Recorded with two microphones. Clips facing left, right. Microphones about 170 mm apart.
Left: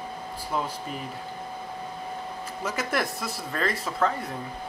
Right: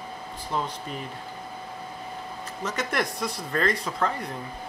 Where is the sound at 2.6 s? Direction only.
5° left (ahead or behind).